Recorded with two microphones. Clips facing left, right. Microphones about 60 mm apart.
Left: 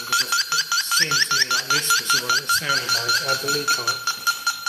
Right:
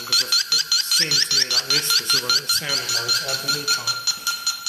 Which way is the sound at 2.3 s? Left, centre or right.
Left.